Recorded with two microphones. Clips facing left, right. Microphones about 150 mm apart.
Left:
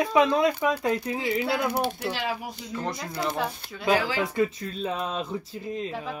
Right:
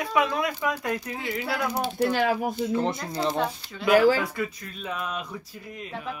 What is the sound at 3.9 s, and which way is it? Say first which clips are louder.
Speech: right 10 dB; 45° right (ahead or behind).